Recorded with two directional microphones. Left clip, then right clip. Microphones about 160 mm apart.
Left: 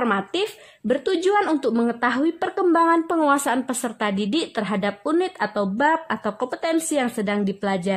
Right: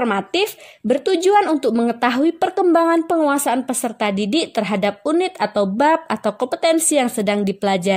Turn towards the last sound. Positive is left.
turn(degrees=-25)  # may be behind; listen again after turning